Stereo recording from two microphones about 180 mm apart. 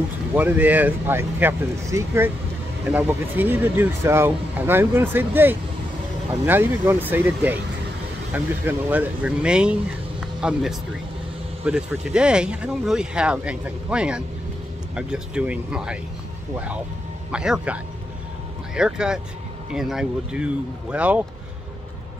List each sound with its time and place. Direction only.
0.3 s speech: 10° right (ahead or behind)
18.8 s speech: 5° right (ahead or behind)